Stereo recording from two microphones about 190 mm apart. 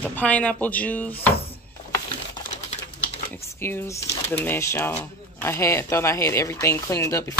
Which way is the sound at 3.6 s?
10° left (ahead or behind).